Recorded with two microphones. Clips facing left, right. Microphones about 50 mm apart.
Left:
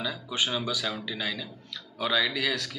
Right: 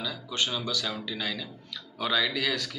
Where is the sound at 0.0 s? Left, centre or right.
Centre.